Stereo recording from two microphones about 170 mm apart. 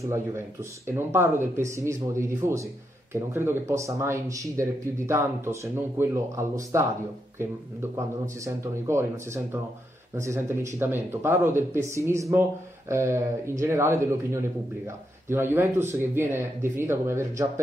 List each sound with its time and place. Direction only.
0.8 s speech: 15° right (ahead or behind)